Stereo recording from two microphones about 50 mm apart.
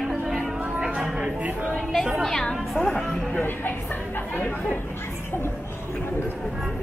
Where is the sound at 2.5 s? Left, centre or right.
Centre.